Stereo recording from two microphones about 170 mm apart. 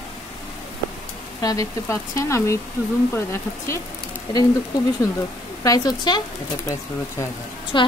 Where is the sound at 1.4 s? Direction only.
20° left (ahead or behind).